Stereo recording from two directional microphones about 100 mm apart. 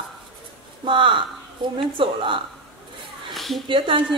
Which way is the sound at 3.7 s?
60° right (ahead or behind).